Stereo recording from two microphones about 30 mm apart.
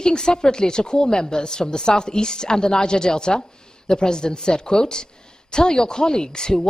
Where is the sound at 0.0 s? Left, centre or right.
Left.